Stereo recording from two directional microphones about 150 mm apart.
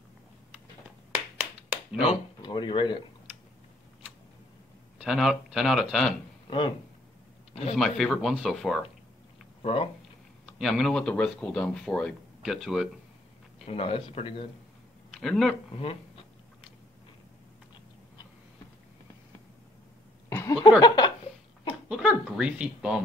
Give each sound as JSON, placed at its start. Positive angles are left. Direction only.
{"t": 1.1, "sound": "clapping", "side_deg": -10}
{"t": 2.0, "sound": "speech", "side_deg": 30}
{"t": 4.9, "sound": "speech", "side_deg": -5}
{"t": 6.4, "sound": "speech", "side_deg": 35}
{"t": 7.7, "sound": "speech", "side_deg": 0}
{"t": 9.6, "sound": "speech", "side_deg": 40}
{"t": 10.4, "sound": "speech", "side_deg": 0}
{"t": 13.7, "sound": "speech", "side_deg": 40}
{"t": 15.2, "sound": "speech", "side_deg": 0}
{"t": 20.2, "sound": "a sound", "side_deg": 20}
{"t": 21.8, "sound": "a sound", "side_deg": -5}